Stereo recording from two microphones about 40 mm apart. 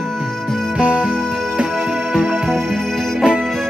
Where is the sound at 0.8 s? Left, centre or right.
Right.